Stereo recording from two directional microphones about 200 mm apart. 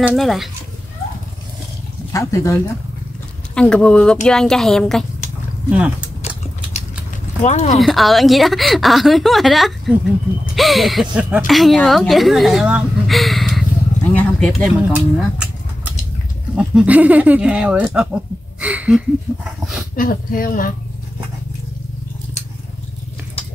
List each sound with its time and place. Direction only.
0.1 s a woman's voice: centre (ahead or behind)
2.1 s speech: 15° left (ahead or behind)
3.5 s a woman's voice: 5° left (ahead or behind)
7.4 s speech: 35° left (ahead or behind)
7.7 s a woman's voice: centre (ahead or behind)
19.6 s dog: centre (ahead or behind)
20.0 s speech: 45° left (ahead or behind)